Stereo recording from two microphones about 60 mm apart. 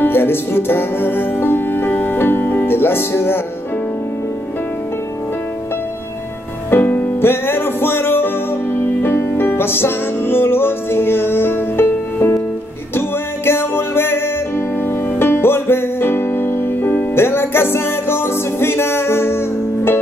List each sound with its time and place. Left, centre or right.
0.0 s music: left
6.7 s music: left
13.5 s music: left